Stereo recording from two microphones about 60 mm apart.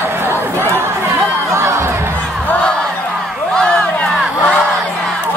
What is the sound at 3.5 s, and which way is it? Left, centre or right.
Crowd, centre.